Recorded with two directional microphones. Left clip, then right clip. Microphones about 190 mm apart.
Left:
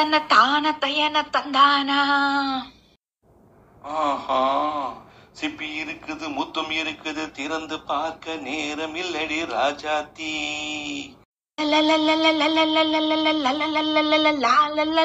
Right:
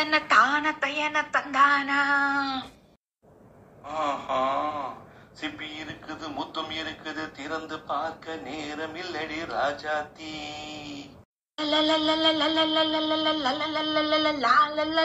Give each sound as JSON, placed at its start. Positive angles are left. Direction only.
{"t": 0.0, "sound": "a man's voice", "side_deg": 35}
{"t": 3.8, "sound": "a man's voice", "side_deg": 30}
{"t": 11.5, "sound": "wind instrument", "side_deg": 30}